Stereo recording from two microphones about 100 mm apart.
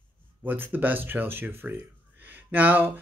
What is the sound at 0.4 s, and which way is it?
Speech, 15° right (ahead or behind).